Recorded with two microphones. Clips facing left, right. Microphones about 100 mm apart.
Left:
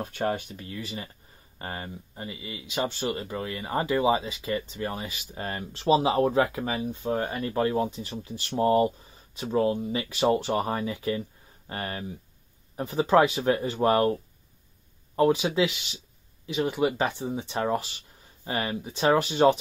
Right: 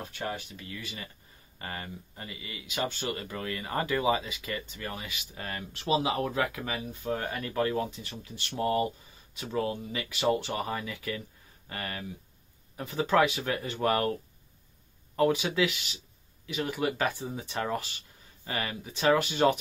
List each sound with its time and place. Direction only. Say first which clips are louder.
0.0 s speech: left 7 dB; 45° left (ahead or behind); by 14.1 s 25° left (ahead or behind)
15.1 s speech: left 3 dB; 25° left (ahead or behind)